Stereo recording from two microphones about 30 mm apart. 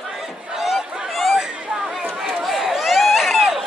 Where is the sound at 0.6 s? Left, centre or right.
Centre.